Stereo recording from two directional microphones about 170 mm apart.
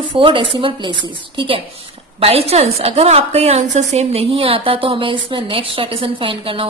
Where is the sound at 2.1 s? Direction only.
35° right (ahead or behind).